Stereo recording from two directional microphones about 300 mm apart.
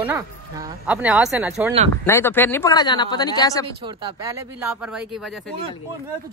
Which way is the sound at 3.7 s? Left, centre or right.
Centre.